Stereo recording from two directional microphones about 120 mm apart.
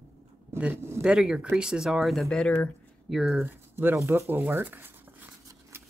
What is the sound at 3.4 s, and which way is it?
Speech, 15° right (ahead or behind).